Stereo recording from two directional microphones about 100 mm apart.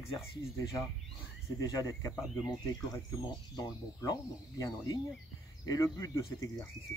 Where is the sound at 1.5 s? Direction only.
35° left (ahead or behind).